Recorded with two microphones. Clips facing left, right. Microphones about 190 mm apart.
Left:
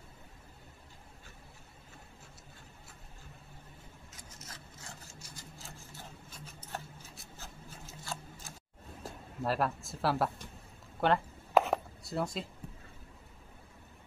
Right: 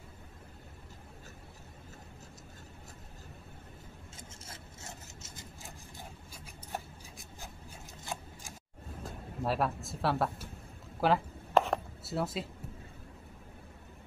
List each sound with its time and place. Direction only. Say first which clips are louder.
4.2 s rub: even; 25° right (ahead or behind)
9.4 s speech: even; centre (ahead or behind)
11.0 s chopping: right 1 dB; 5° right (ahead or behind)